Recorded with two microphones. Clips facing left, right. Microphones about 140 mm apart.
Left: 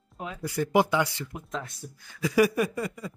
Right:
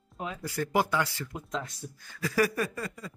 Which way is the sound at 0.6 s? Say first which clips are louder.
Left 4 dB; 15° left (ahead or behind).